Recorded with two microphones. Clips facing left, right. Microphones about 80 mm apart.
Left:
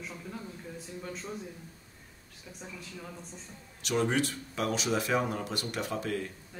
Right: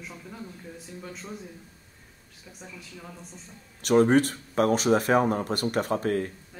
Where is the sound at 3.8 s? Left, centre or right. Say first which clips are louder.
Right 9 dB; right.